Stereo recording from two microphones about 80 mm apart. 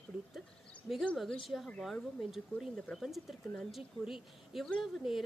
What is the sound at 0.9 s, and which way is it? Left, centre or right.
Speech, left.